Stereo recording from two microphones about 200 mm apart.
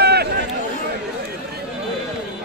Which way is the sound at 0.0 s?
55° right (ahead or behind).